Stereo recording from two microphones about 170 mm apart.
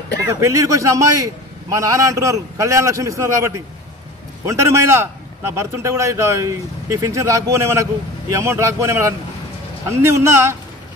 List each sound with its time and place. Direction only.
0.3 s a man's voice: 20° right (ahead or behind)
4.5 s a man's voice: 15° right (ahead or behind)